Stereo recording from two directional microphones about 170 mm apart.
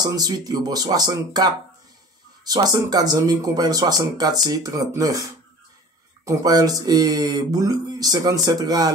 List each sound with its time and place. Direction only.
0.0 s speech: 25° right (ahead or behind)
6.2 s speech: 20° right (ahead or behind)